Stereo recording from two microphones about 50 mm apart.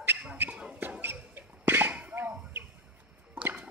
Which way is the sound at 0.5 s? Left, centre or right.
Right.